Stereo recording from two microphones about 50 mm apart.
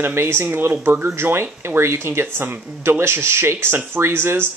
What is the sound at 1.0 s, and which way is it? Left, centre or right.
Speech, right.